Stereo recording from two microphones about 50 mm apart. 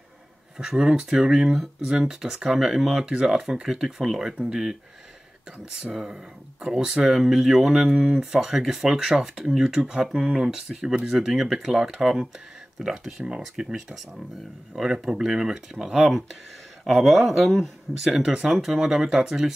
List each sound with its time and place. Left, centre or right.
0.6 s speech: centre
5.8 s speech: centre
16.8 s speech: centre